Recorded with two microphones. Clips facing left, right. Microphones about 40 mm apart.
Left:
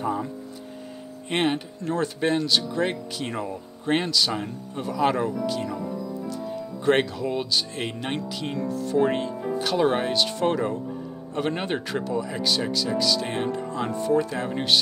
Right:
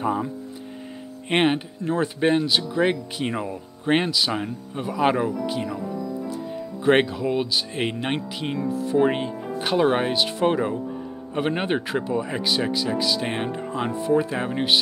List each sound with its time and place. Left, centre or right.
1.3 s speech: right
1.8 s speech: centre